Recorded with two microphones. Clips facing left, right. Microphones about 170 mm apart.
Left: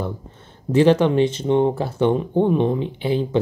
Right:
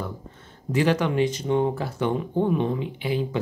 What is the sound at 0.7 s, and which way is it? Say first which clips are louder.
Speech: left 7 dB; 30° left (ahead or behind).